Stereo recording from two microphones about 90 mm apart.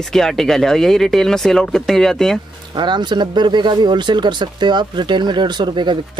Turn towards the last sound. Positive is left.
turn(degrees=-60)  # may be behind; listen again after turning